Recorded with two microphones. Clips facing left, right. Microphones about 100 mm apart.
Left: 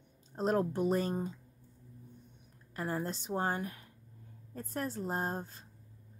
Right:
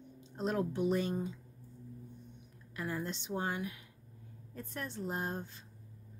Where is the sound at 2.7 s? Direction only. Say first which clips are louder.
Left 3 dB; 40° left (ahead or behind).